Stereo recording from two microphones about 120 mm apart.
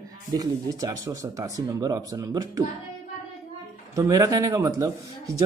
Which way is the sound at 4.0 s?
30° right (ahead or behind).